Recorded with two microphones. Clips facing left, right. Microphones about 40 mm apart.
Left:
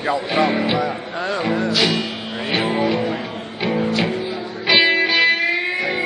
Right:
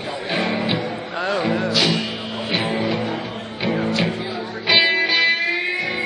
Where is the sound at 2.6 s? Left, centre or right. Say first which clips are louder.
Left 5 dB; left.